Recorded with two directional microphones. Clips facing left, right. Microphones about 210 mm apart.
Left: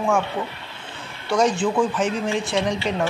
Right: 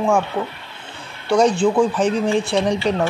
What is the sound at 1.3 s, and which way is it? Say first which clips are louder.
Speech: right 4 dB; 35° right (ahead or behind).